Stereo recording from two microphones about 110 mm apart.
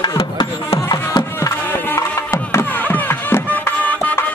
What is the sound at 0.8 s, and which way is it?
Music, 40° left (ahead or behind).